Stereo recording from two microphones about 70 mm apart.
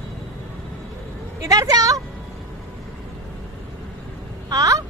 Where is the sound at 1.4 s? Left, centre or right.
Right.